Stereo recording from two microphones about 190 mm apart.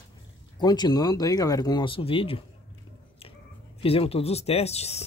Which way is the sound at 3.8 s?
30° left (ahead or behind).